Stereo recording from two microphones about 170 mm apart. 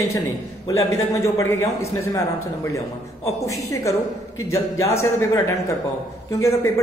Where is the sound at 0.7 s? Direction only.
20° left (ahead or behind).